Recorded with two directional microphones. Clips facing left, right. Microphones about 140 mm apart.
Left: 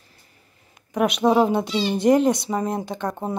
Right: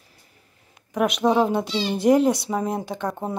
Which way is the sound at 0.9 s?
Centre (ahead or behind).